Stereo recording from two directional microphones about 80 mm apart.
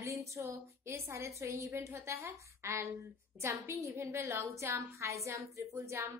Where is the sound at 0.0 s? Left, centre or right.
Right.